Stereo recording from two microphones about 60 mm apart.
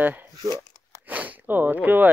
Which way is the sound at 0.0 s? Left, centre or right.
Right.